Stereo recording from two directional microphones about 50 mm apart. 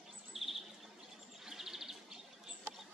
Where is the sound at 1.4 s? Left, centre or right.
Centre.